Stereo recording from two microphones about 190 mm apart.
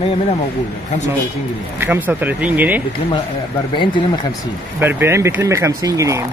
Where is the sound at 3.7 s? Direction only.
25° left (ahead or behind).